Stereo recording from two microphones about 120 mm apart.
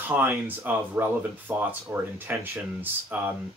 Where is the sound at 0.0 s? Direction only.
20° right (ahead or behind).